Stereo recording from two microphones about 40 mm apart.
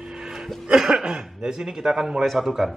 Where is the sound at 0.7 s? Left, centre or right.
Centre.